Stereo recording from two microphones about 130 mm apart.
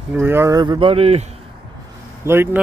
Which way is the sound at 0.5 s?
40° right (ahead or behind).